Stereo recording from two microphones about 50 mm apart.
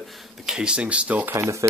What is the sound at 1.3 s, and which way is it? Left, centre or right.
Speech, right.